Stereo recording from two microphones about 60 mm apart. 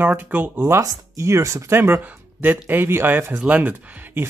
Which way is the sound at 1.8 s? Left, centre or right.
Right.